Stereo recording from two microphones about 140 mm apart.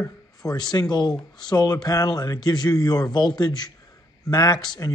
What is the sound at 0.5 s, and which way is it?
A man's voice, 30° left (ahead or behind).